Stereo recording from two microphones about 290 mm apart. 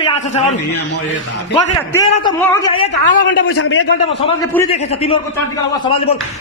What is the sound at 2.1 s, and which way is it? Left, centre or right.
A woman's voice, centre.